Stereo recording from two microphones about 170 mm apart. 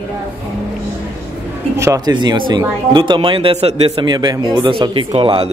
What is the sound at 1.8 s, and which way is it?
Speech, 20° right (ahead or behind).